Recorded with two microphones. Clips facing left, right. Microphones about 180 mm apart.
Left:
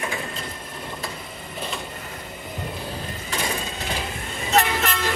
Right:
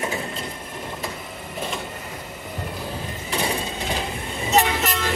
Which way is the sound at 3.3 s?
10° right (ahead or behind).